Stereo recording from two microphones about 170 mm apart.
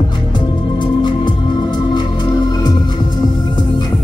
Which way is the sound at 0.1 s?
25° left (ahead or behind).